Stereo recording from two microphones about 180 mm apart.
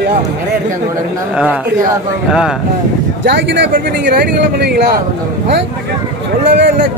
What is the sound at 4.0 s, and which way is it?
Speech, 60° right (ahead or behind).